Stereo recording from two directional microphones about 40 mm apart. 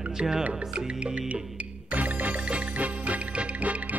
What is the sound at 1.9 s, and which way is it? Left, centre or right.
Music, right.